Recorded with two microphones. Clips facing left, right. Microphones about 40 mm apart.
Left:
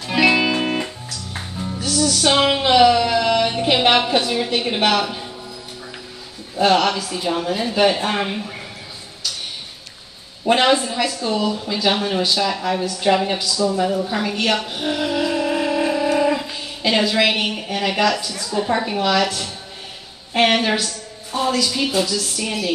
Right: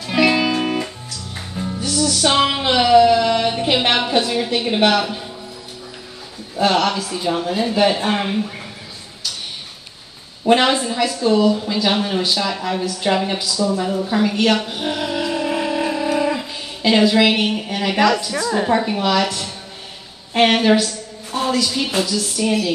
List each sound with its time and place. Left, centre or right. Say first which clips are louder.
0.0 s music: even; centre
1.6 s music: even; centre
4.3 s speech: right 1 dB; centre
6.5 s speech: left 1 dB; centre
10.4 s a woman's voice: right 1 dB; centre
18.7 s a woman's voice: left 1 dB; centre